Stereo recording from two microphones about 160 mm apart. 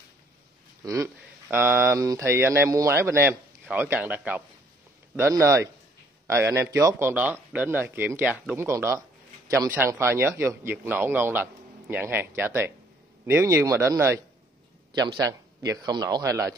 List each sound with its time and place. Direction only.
0.8 s speech: 20° right (ahead or behind)
14.9 s speech: 25° right (ahead or behind)